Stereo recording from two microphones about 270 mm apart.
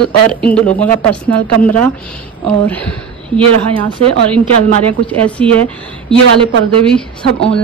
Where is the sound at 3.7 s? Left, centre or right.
Centre.